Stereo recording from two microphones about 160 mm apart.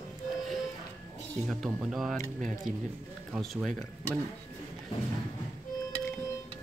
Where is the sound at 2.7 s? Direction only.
55° right (ahead or behind).